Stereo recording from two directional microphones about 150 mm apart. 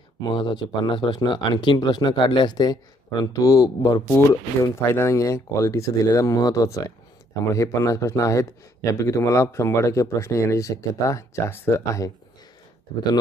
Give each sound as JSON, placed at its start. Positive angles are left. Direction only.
{"t": 0.3, "sound": "speech", "side_deg": 30}